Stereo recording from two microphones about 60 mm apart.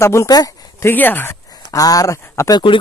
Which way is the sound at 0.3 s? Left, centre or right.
Left.